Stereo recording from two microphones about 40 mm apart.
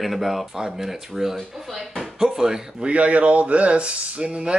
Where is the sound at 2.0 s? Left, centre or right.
Centre.